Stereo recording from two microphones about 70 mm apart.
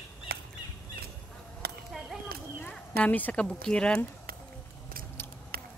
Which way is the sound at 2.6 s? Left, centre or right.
Left.